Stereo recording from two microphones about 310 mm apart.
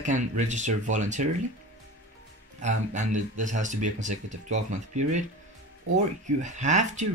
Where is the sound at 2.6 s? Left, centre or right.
Right.